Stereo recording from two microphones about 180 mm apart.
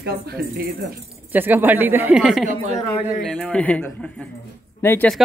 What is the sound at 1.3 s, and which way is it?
Speech, 10° right (ahead or behind).